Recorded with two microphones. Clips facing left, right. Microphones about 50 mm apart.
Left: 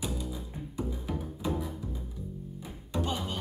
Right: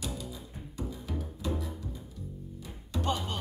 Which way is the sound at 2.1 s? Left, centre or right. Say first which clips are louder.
Left 3 dB; centre.